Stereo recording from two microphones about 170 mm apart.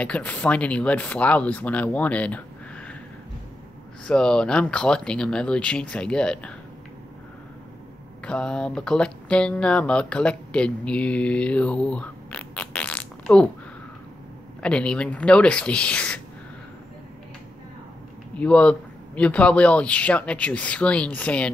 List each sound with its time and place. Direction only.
0.0 s speech: 10° left (ahead or behind)
4.1 s speech: 5° left (ahead or behind)
8.3 s speech: 5° left (ahead or behind)
14.6 s speech: 5° left (ahead or behind)
18.4 s speech: 5° left (ahead or behind)